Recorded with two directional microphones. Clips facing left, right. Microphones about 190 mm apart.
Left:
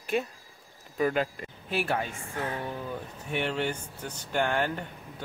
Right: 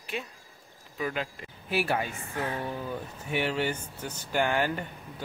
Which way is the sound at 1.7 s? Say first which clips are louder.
Right 1 dB; 5° right (ahead or behind).